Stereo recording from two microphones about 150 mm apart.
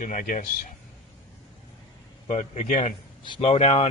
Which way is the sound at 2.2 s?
50° left (ahead or behind).